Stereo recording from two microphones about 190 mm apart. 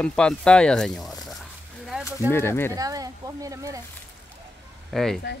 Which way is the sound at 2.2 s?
15° left (ahead or behind).